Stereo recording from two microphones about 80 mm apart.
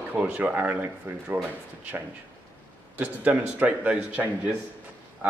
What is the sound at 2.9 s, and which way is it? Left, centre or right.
Speech, right.